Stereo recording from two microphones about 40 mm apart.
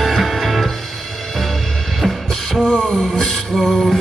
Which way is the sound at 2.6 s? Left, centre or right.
Left.